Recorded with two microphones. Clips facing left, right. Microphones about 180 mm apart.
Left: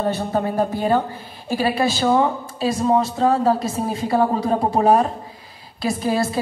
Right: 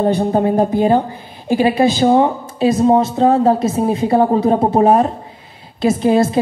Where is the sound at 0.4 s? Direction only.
20° right (ahead or behind).